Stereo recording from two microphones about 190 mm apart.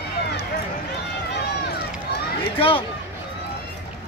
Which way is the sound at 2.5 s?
30° left (ahead or behind).